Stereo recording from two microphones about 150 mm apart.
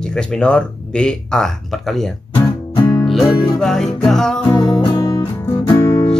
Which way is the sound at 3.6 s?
5° left (ahead or behind).